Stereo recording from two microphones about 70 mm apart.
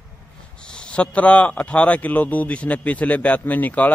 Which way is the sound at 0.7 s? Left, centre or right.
Centre.